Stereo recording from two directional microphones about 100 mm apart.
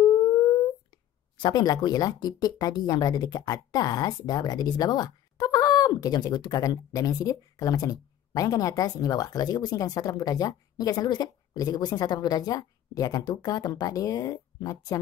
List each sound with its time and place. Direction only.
1.4 s speech: 40° left (ahead or behind)